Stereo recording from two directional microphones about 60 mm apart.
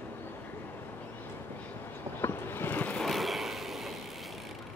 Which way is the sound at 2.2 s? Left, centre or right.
Left.